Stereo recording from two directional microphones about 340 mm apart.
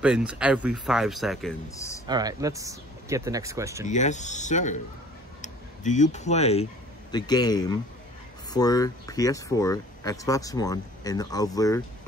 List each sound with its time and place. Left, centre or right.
0.0 s speech: centre
2.0 s speech: centre
3.8 s speech: left